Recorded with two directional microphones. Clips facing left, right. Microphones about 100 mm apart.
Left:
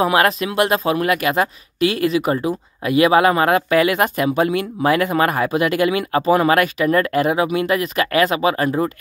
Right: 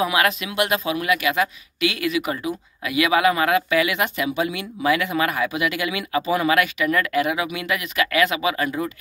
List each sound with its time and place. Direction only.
0.0 s speech: 40° left (ahead or behind)